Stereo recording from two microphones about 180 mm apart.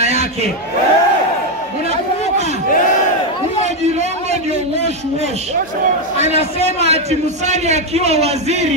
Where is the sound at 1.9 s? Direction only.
40° right (ahead or behind).